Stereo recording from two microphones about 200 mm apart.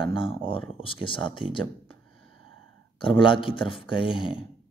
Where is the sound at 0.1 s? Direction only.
25° left (ahead or behind).